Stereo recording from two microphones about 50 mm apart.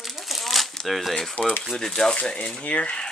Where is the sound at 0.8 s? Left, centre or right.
Centre.